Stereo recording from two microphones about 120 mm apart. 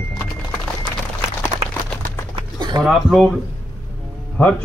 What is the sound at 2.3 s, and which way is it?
Pigeon, 40° right (ahead or behind).